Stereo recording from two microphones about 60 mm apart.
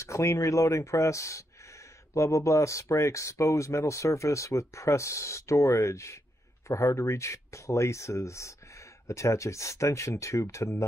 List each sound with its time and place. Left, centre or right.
0.0 s speech: left